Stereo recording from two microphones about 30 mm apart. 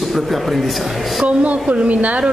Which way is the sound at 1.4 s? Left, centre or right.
Right.